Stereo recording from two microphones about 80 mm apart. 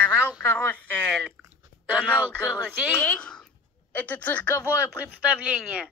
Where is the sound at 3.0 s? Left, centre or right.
Centre.